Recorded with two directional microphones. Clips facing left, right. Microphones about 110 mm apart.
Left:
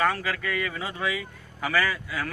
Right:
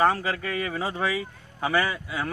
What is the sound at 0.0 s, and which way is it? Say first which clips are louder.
Speech: right 3 dB; 30° right (ahead or behind).